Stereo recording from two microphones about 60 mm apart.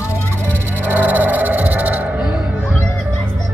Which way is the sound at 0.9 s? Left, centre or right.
Right.